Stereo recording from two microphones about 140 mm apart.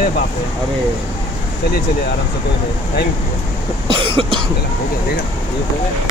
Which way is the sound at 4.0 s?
40° right (ahead or behind).